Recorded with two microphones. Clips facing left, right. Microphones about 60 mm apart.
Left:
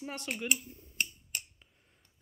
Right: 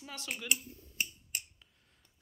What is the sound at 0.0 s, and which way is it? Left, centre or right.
Speech, left.